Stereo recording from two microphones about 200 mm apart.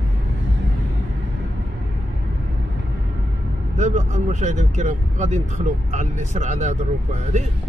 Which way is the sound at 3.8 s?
35° right (ahead or behind).